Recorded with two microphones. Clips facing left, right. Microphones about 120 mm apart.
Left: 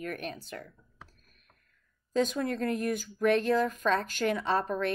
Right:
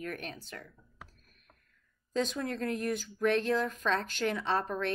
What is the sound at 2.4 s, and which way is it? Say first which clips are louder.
Speech: left 3 dB; 5° left (ahead or behind).